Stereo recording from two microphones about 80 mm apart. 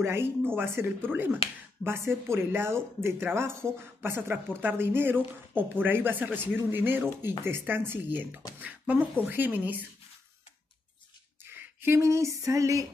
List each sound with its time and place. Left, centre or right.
0.0 s speech: right
11.4 s speech: right